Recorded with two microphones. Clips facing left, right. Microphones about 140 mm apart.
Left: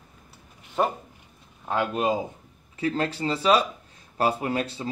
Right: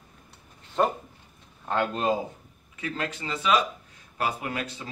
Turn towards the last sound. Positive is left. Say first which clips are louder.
# left 5 dB
turn(degrees=30)  # may be behind; listen again after turning